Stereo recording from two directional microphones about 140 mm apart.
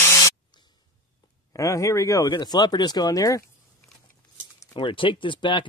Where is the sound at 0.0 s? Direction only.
20° left (ahead or behind).